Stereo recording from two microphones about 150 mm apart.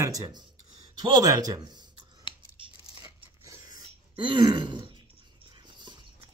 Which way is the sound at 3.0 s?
20° right (ahead or behind).